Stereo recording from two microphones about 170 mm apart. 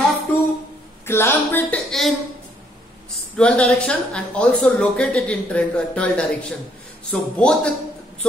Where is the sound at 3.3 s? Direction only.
5° left (ahead or behind).